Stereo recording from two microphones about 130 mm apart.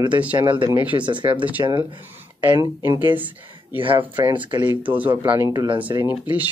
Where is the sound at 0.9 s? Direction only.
40° right (ahead or behind).